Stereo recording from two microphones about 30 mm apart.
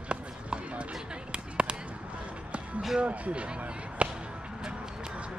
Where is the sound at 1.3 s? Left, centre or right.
Right.